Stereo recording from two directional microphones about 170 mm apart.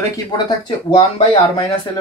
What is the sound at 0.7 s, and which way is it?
Speech, 30° left (ahead or behind).